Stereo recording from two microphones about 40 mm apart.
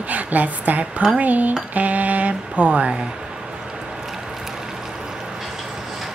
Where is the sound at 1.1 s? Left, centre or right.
Right.